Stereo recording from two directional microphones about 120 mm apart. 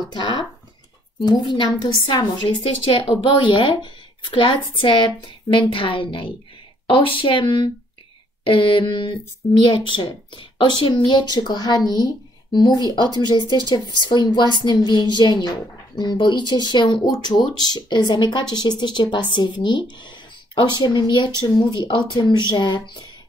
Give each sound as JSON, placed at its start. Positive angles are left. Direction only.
{"t": 0.1, "sound": "a woman's voice", "side_deg": 40}